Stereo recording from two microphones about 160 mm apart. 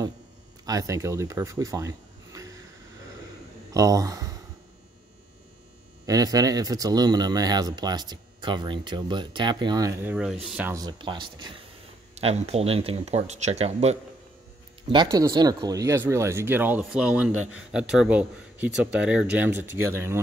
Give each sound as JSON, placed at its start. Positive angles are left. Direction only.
{"t": 0.7, "sound": "speech", "side_deg": -20}
{"t": 3.7, "sound": "speech", "side_deg": -20}
{"t": 6.0, "sound": "speech", "side_deg": -25}
{"t": 10.1, "sound": "speech", "side_deg": -5}
{"t": 10.7, "sound": "speech", "side_deg": -25}
{"t": 12.2, "sound": "speech", "side_deg": -40}
{"t": 14.9, "sound": "speech", "side_deg": -25}